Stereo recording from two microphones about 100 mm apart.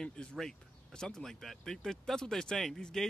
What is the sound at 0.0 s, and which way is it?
Speech, 10° left (ahead or behind).